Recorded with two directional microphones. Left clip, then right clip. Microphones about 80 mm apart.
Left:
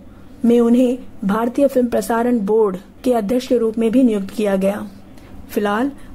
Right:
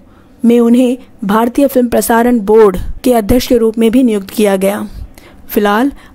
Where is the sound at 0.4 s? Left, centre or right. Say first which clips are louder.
Right 5 dB; right.